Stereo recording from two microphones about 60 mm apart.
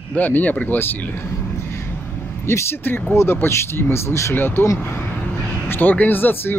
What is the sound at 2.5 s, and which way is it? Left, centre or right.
Speech, left.